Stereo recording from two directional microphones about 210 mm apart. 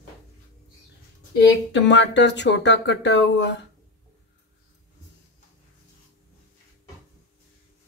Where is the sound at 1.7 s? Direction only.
60° left (ahead or behind).